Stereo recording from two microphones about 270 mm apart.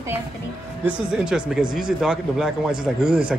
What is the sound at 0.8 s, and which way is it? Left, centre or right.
Speech, centre.